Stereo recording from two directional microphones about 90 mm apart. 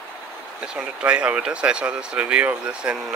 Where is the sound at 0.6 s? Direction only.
10° right (ahead or behind).